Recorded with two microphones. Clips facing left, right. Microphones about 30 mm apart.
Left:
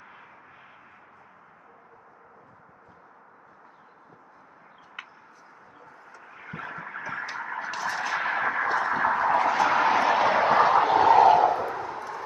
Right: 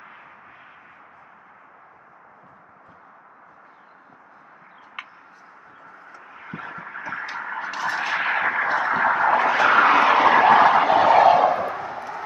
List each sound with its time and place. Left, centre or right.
6.4 s vehicle: right
7.0 s a sound: right
11.2 s vehicle: right